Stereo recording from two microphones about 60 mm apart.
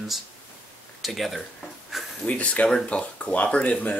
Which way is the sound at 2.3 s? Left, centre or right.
Left.